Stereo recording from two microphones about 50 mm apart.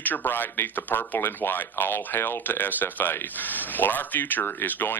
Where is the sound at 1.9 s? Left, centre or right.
Left.